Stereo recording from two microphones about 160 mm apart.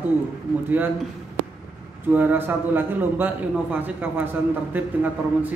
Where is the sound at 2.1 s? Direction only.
10° right (ahead or behind).